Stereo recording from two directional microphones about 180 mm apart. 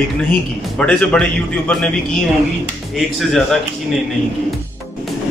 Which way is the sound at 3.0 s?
Centre (ahead or behind).